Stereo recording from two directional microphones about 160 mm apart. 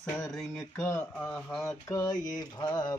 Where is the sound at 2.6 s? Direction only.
25° left (ahead or behind).